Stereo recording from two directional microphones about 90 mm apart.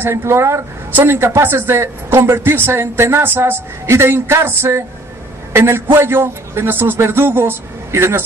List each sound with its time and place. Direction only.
0.0 s speech: 30° right (ahead or behind)